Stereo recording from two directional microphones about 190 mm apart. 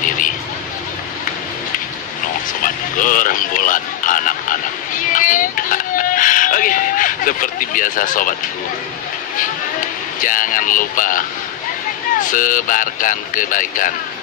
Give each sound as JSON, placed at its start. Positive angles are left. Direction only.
{"t": 2.6, "sound": "speech", "side_deg": 45}
{"t": 10.2, "sound": "speech", "side_deg": 45}